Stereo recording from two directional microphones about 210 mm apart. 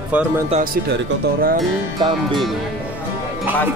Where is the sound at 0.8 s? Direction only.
50° right (ahead or behind).